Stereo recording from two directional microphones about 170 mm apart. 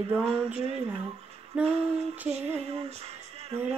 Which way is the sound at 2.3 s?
40° right (ahead or behind).